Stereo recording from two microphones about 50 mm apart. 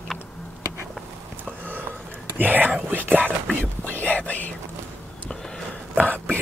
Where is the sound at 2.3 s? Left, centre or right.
Right.